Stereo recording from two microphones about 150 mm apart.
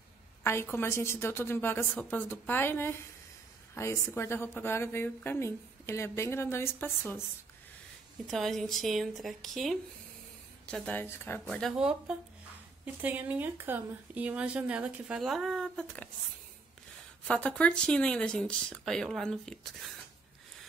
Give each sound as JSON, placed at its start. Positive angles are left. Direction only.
{"t": 0.4, "sound": "a woman's voice", "side_deg": 15}
{"t": 8.3, "sound": "a woman's voice", "side_deg": 0}
{"t": 11.7, "sound": "speech", "side_deg": -5}
{"t": 17.3, "sound": "speech", "side_deg": 10}